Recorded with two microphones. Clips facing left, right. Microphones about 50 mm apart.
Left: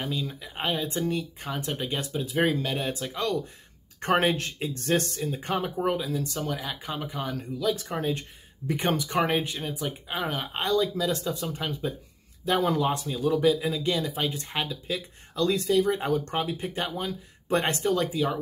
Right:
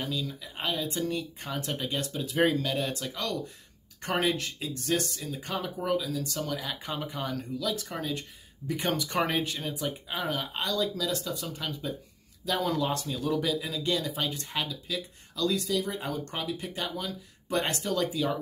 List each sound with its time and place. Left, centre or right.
0.0 s speech: left; by 2.6 s centre
2.6 s speech: centre
6.6 s speech: centre
8.6 s speech: left
8.9 s speech: centre
10.0 s speech: centre
17.8 s speech: centre